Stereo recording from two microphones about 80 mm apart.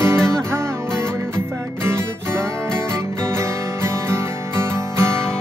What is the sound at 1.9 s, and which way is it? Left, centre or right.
Music, right.